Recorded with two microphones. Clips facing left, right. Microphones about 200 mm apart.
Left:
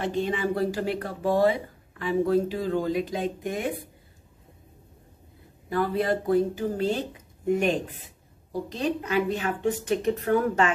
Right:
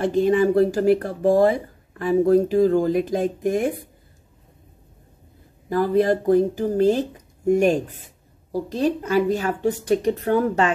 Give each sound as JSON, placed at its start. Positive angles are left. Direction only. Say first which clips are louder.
{"t": 0.0, "sound": "speech", "louder": "right 9 dB", "side_deg": -45}
{"t": 5.7, "sound": "a woman's voice", "louder": "right 6 dB", "side_deg": -40}